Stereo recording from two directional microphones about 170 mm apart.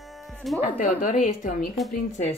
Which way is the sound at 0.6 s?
50° left (ahead or behind).